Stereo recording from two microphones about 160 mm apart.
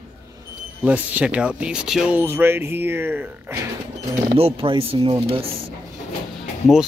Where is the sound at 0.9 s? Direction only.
5° right (ahead or behind).